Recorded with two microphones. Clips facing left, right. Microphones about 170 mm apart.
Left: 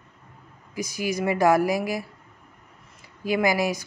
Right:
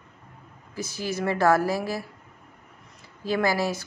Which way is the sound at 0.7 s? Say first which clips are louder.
Left 3 dB; 15° left (ahead or behind).